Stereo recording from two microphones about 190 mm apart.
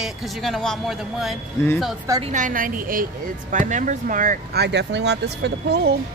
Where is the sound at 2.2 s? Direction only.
40° right (ahead or behind).